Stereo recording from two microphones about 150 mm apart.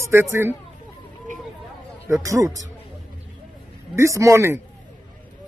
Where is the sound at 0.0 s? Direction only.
15° right (ahead or behind).